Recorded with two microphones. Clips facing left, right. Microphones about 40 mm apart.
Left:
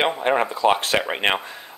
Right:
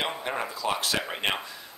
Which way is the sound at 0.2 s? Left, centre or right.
Left.